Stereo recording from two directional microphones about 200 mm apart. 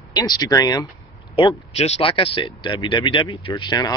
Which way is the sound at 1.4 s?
30° left (ahead or behind).